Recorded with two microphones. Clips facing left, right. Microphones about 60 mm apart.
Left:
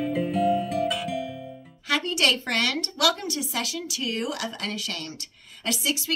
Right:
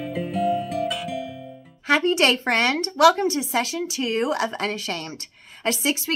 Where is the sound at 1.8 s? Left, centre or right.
Right.